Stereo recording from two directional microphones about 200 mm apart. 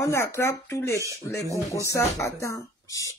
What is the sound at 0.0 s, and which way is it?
Speech, 15° left (ahead or behind).